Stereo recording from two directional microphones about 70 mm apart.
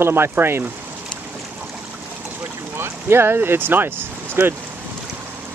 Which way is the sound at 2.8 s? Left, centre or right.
Right.